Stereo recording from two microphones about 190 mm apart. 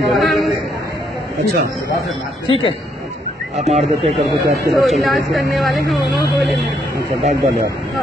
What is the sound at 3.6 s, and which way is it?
Speech, 35° right (ahead or behind).